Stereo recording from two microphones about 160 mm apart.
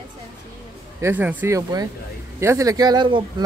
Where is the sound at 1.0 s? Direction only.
10° right (ahead or behind).